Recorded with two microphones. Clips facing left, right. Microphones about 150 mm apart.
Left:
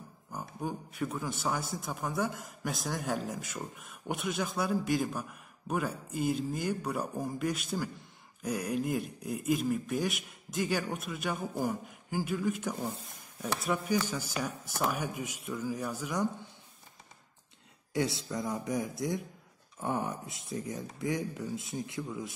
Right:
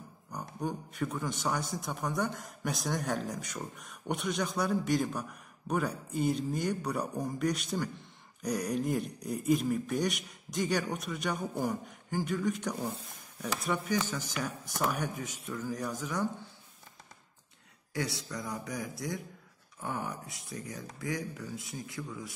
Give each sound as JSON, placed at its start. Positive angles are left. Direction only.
{"t": 0.3, "sound": "a man's voice", "side_deg": 5}
{"t": 17.9, "sound": "speech", "side_deg": 25}